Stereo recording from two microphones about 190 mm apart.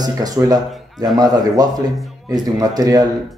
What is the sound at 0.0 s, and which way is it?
Speech, 20° right (ahead or behind).